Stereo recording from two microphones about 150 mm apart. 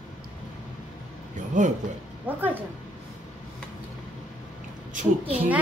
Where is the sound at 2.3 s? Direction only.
10° right (ahead or behind).